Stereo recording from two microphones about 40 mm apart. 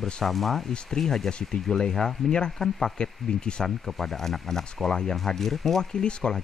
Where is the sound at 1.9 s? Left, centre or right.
Centre.